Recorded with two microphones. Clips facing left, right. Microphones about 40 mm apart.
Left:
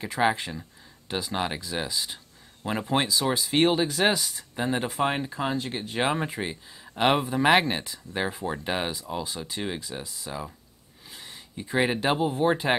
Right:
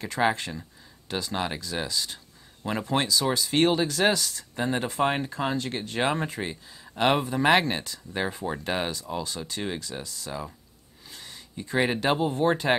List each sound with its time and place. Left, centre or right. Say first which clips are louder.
0.0 s speech: even; centre
4.6 s speech: even; centre